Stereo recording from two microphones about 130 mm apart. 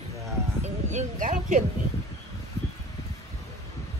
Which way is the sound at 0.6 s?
65° right (ahead or behind).